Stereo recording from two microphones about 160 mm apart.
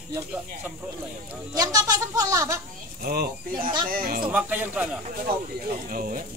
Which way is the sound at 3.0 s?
70° right (ahead or behind).